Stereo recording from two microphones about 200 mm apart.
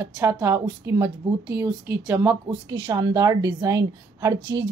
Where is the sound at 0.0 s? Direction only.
15° right (ahead or behind).